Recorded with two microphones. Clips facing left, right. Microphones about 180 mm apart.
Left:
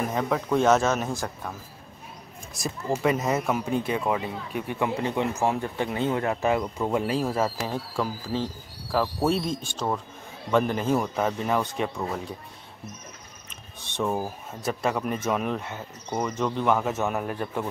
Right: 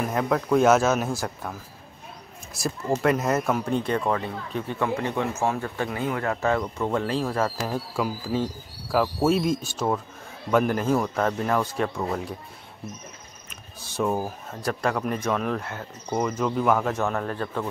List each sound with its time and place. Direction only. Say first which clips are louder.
0.1 s speech: right 3 dB; centre (ahead or behind)
2.6 s speech: right 2 dB; centre (ahead or behind)
7.7 s speech: right 2 dB; 5° right (ahead or behind)
13.9 s speech: right 2 dB; centre (ahead or behind)